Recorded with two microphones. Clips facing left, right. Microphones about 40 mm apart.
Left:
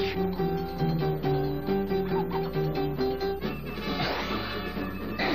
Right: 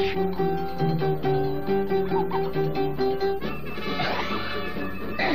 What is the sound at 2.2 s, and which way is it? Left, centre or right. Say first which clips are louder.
Music: right 4 dB; centre.